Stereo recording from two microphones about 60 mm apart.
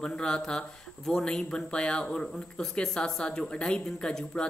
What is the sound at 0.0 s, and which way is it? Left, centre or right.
Speech, centre.